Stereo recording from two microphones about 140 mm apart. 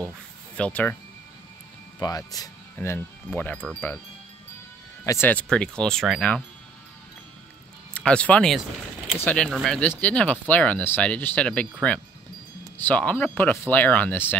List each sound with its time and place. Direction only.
0.6 s speech: 10° left (ahead or behind)
2.0 s speech: 25° left (ahead or behind)
3.3 s speech: 10° left (ahead or behind)
5.0 s speech: 20° left (ahead or behind)
5.5 s speech: 5° left (ahead or behind)
7.9 s speech: 10° left (ahead or behind)
12.7 s speech: 10° left (ahead or behind)